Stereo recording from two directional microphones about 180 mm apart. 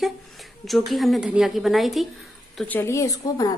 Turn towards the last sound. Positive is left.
turn(degrees=20)  # may be behind; listen again after turning